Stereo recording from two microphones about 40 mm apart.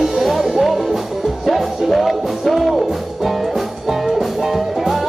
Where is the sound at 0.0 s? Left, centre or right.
Centre.